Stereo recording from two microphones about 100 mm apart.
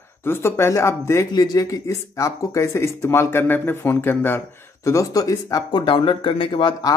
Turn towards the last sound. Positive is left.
turn(degrees=55)  # may be behind; listen again after turning